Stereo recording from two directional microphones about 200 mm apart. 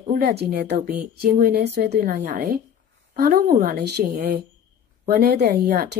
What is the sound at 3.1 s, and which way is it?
Speech, 50° right (ahead or behind).